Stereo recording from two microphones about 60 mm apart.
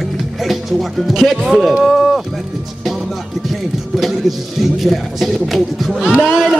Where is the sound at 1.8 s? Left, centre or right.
Centre.